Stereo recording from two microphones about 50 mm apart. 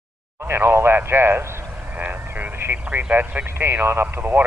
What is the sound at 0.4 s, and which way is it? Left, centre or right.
Speech, right.